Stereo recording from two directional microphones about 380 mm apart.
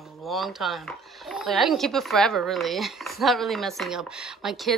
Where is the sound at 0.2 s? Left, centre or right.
Centre.